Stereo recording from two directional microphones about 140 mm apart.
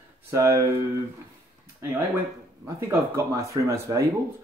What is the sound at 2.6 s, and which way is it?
Speech, 20° right (ahead or behind).